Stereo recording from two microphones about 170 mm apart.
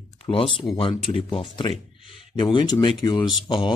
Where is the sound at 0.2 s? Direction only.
30° left (ahead or behind).